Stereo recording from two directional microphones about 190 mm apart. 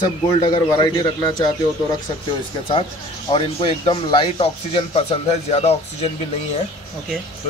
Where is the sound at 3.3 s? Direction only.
25° left (ahead or behind).